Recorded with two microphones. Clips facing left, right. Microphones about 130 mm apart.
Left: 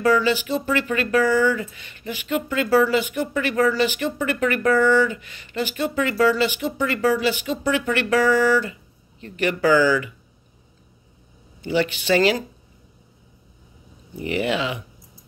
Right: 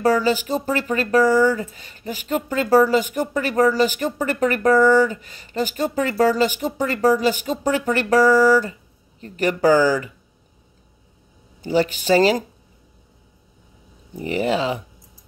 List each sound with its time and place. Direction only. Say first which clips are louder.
0.0 s speech: right 1 dB; 40° right (ahead or behind)
11.6 s speech: right 2 dB; 40° right (ahead or behind)
14.1 s speech: right 2 dB; 40° right (ahead or behind)